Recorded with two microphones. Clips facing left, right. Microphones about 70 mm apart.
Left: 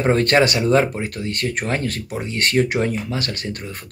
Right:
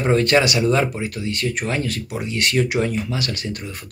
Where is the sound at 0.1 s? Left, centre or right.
Left.